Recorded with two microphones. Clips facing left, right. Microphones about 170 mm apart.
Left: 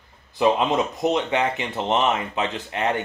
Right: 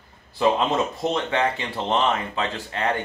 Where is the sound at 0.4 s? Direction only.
15° left (ahead or behind).